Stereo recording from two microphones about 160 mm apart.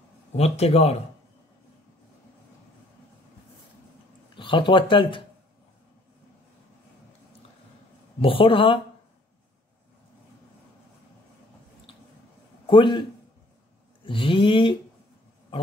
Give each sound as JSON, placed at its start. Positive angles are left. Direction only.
{"t": 0.4, "sound": "speech", "side_deg": 40}
{"t": 4.4, "sound": "speech", "side_deg": 30}
{"t": 8.2, "sound": "speech", "side_deg": 35}
{"t": 12.6, "sound": "a man's voice", "side_deg": 30}
{"t": 14.0, "sound": "speech", "side_deg": 35}